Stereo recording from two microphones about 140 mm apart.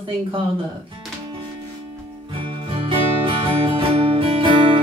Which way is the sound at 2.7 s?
40° right (ahead or behind).